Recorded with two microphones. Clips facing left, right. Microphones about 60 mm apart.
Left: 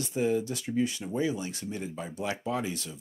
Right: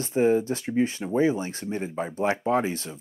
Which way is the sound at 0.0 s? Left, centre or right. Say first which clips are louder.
Right 6 dB; right.